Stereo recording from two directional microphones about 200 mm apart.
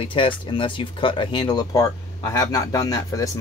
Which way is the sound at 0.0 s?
25° left (ahead or behind).